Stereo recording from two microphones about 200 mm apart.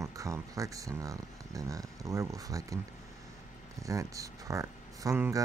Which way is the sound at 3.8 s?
15° right (ahead or behind).